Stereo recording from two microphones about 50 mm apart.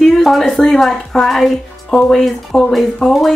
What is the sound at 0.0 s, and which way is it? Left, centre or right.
Speech, centre.